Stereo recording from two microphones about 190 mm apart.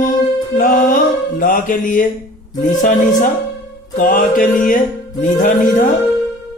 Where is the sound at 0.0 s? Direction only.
45° left (ahead or behind).